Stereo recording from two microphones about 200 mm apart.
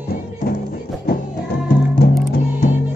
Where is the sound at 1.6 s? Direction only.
50° left (ahead or behind).